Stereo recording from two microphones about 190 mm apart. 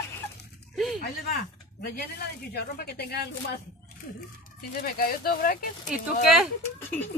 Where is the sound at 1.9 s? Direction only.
55° left (ahead or behind).